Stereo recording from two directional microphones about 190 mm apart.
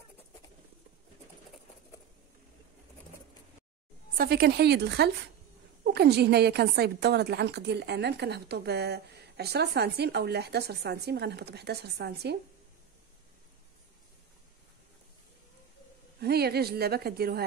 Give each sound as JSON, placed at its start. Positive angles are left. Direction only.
{"t": 4.2, "sound": "a woman's voice", "side_deg": -55}
{"t": 16.2, "sound": "a woman's voice", "side_deg": -55}